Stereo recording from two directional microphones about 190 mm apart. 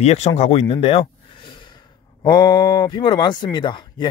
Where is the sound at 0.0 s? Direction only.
35° left (ahead or behind).